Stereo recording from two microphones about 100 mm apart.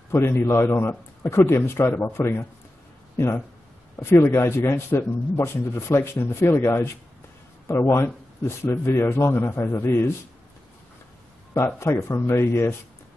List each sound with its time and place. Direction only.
0.1 s speech: 25° left (ahead or behind)
4.0 s speech: 25° left (ahead or behind)
11.5 s speech: 25° left (ahead or behind)